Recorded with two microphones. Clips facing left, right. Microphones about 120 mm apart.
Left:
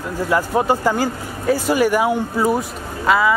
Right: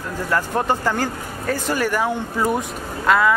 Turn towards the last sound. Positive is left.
turn(degrees=5)  # may be behind; listen again after turning